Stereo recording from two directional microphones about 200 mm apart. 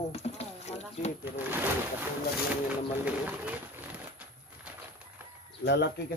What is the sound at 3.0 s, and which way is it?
Pigeon, 5° right (ahead or behind).